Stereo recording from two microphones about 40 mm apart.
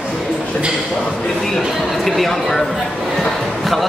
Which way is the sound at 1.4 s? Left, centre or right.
Centre.